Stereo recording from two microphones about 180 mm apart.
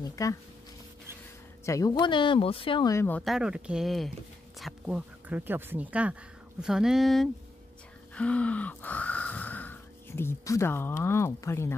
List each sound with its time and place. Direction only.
0.0 s speech: 15° left (ahead or behind)
1.7 s speech: 20° left (ahead or behind)
2.9 s speech: 10° left (ahead or behind)
3.3 s speech: 5° right (ahead or behind)
8.1 s gasp: 5° left (ahead or behind)